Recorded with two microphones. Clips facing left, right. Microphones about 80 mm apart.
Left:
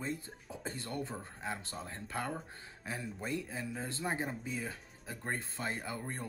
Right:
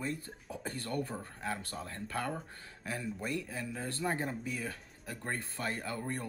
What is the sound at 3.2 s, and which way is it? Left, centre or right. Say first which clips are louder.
Speech: left 2 dB; left.